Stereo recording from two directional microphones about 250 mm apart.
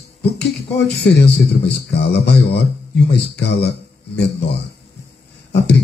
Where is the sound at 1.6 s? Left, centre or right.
Left.